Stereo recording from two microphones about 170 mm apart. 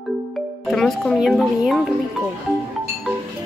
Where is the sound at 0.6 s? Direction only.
Centre (ahead or behind).